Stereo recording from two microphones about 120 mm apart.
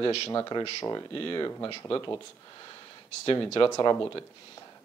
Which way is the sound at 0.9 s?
40° left (ahead or behind).